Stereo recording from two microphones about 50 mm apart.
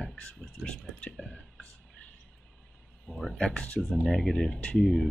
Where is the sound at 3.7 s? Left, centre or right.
Centre.